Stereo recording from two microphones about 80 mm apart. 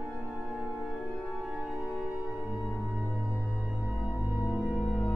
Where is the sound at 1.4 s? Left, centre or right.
Centre.